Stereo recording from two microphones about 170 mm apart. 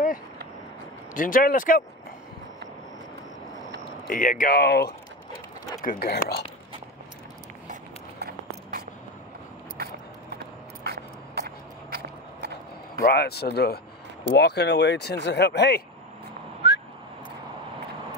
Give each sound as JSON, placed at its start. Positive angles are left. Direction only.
{"t": 1.1, "sound": "speech", "side_deg": 55}
{"t": 4.1, "sound": "speech", "side_deg": 50}
{"t": 5.8, "sound": "speech", "side_deg": 60}
{"t": 8.2, "sound": "a sound", "side_deg": -60}
{"t": 10.3, "sound": "a sound", "side_deg": -70}
{"t": 13.0, "sound": "speech", "side_deg": 70}
{"t": 16.6, "sound": "whistling", "side_deg": 90}